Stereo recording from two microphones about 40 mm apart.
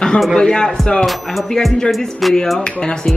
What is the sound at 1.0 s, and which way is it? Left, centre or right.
Music, centre.